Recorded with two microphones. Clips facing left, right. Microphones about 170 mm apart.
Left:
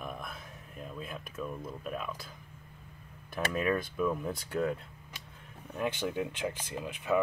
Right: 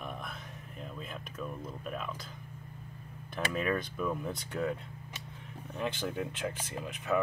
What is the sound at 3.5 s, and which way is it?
Speech, centre (ahead or behind).